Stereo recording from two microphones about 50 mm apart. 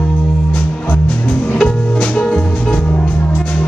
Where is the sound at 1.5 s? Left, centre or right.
Left.